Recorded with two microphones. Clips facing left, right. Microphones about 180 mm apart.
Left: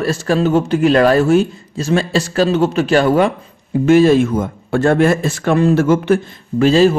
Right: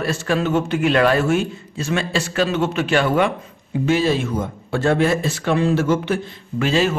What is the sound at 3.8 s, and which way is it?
Speech, 50° left (ahead or behind).